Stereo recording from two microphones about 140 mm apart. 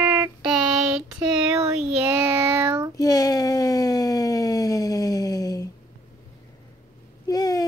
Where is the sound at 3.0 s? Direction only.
25° left (ahead or behind).